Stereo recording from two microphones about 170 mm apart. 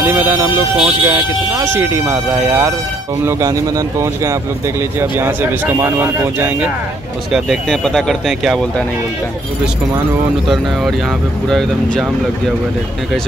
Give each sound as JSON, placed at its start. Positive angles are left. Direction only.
{"t": 0.2, "sound": "speech", "side_deg": -15}
{"t": 7.3, "sound": "speech", "side_deg": 0}
{"t": 10.5, "sound": "speech", "side_deg": 0}